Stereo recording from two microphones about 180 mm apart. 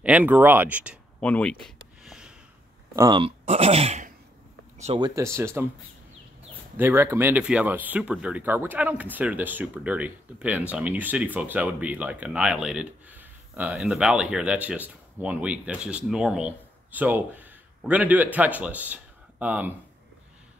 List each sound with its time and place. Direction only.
0.0 s speech: 10° right (ahead or behind)
1.2 s a sound: 5° left (ahead or behind)
3.0 s speech: 25° right (ahead or behind)
5.0 s speech: 15° right (ahead or behind)
6.8 s speech: 15° right (ahead or behind)